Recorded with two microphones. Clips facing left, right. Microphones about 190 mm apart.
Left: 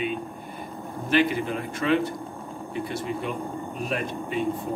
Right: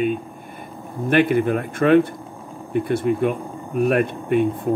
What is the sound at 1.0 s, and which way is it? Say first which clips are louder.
Speech: right 6 dB; 55° right (ahead or behind).